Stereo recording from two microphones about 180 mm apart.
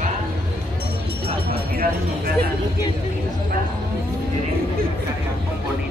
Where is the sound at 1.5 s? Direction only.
60° right (ahead or behind).